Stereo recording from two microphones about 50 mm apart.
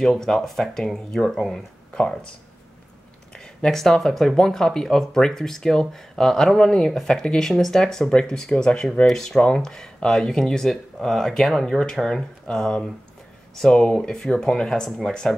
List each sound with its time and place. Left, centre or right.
0.0 s speech: centre
2.0 s speech: centre
3.3 s speech: centre